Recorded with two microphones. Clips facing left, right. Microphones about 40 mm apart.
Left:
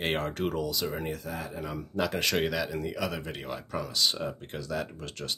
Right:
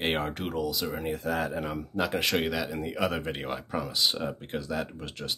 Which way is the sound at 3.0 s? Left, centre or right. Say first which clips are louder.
Right 4 dB; right.